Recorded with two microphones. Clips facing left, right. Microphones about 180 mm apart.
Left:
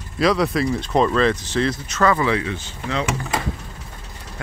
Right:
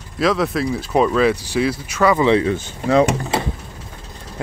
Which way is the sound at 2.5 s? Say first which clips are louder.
Right 10 dB; 40° right (ahead or behind).